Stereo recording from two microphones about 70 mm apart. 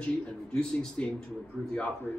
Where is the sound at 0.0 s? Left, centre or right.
Centre.